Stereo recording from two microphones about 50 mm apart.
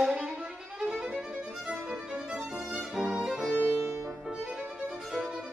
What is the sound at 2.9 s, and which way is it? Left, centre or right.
Violin, centre.